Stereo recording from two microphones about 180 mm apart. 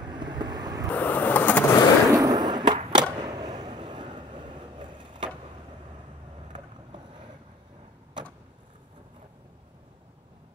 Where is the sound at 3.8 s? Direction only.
25° right (ahead or behind).